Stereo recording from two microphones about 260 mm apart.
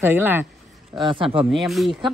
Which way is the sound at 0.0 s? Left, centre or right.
Centre.